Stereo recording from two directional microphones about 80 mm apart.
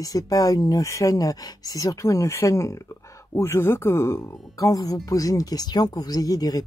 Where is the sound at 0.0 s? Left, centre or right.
Left.